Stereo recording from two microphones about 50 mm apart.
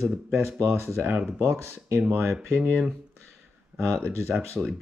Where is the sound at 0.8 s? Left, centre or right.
Right.